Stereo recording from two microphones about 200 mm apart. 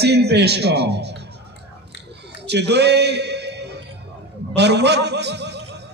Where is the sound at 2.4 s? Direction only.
55° right (ahead or behind).